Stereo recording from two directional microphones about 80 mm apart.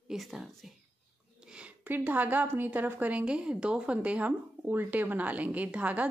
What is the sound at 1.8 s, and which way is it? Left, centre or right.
A woman's voice, right.